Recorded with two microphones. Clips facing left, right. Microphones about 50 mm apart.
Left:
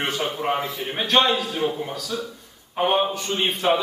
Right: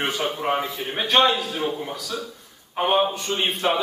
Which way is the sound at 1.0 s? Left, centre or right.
Centre.